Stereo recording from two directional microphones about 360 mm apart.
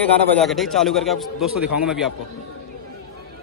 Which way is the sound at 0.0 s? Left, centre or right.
Centre.